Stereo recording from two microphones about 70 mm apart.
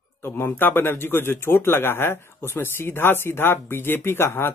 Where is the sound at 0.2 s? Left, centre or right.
Left.